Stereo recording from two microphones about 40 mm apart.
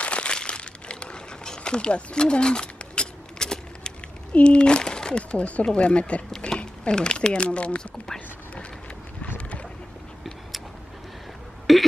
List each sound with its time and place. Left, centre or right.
0.0 s crumpling: left
4.3 s speech: left
11.7 s a sound: centre